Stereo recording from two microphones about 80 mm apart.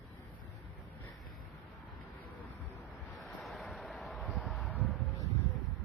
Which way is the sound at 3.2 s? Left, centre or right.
Centre.